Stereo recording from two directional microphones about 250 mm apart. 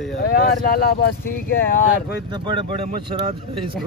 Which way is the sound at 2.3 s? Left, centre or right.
Centre.